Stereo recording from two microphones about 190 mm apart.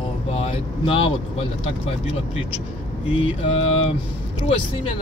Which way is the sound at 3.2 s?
30° left (ahead or behind).